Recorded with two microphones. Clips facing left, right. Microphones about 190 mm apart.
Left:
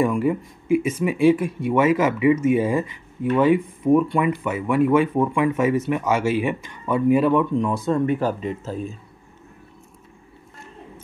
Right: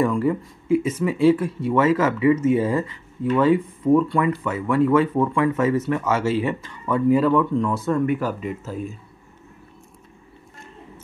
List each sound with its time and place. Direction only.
0.0 s speech: 15° left (ahead or behind)
8.0 s speech: 30° left (ahead or behind)